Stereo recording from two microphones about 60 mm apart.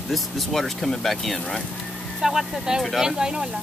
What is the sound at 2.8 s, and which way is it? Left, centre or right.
Speech, centre.